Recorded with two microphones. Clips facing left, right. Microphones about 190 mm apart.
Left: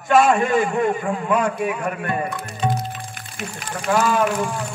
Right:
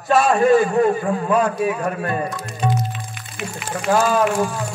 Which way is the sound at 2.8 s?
40° left (ahead or behind).